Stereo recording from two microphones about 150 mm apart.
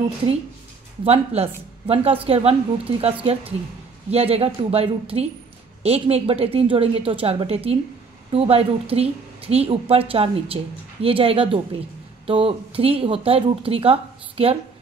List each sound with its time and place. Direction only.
1.0 s speech: 40° right (ahead or behind)